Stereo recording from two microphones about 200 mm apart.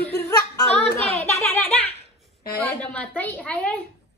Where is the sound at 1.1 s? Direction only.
35° left (ahead or behind).